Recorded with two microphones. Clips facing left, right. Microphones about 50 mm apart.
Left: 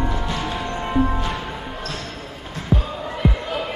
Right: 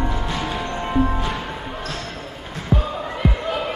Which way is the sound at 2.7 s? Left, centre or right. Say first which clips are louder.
Right 1 dB; centre.